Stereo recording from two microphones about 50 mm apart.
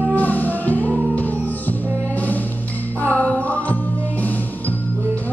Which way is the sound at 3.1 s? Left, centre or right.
Left.